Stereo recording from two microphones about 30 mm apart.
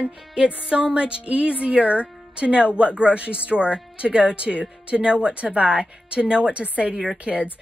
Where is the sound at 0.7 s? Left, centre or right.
Right.